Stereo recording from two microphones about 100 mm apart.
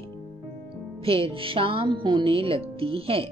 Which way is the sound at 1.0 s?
65° right (ahead or behind).